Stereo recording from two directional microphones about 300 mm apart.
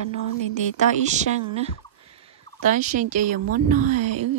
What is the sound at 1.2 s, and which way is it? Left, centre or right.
A woman's voice, right.